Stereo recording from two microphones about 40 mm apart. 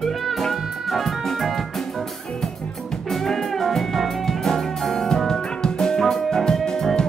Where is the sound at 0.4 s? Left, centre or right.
Centre.